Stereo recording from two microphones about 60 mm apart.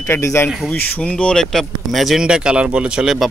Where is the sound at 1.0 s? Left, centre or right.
Centre.